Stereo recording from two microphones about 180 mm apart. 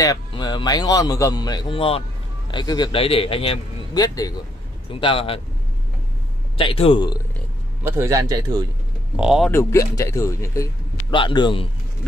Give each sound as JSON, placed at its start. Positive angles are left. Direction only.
{"t": 0.0, "sound": "a man's voice", "side_deg": 20}
{"t": 6.5, "sound": "a man's voice", "side_deg": 30}
{"t": 7.8, "sound": "a man's voice", "side_deg": -15}
{"t": 9.1, "sound": "speech", "side_deg": -5}
{"t": 9.5, "sound": "a man's voice", "side_deg": 15}